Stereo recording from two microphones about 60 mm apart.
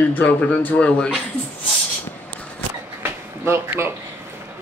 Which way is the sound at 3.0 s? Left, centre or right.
Right.